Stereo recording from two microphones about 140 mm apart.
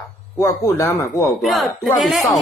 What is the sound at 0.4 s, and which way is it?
Speech, 20° left (ahead or behind).